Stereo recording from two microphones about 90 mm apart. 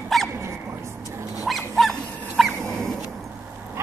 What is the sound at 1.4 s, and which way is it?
Dog, centre (ahead or behind).